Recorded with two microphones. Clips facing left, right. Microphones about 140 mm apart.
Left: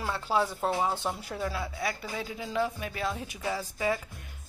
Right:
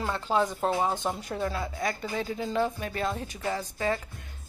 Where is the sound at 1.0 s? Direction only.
5° left (ahead or behind).